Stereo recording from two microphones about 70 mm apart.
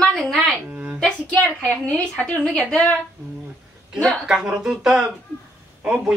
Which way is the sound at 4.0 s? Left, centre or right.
Centre.